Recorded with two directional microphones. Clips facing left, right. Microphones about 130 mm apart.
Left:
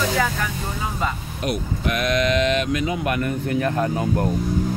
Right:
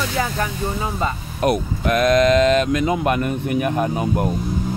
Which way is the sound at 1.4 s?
45° right (ahead or behind).